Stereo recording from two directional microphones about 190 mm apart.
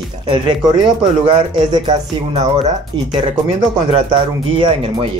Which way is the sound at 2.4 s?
35° right (ahead or behind).